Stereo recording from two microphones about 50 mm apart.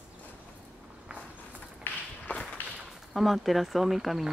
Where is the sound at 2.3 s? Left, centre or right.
Left.